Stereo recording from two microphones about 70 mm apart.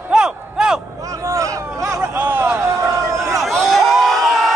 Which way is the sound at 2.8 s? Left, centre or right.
Right.